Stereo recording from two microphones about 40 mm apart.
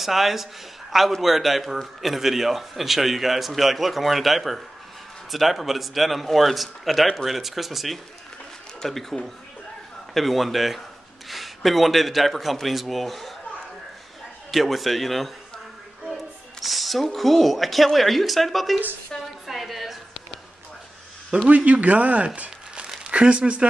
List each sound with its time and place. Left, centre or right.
0.0 s a man's voice: centre
14.5 s a man's voice: centre
19.4 s a sound: centre
21.5 s speech: right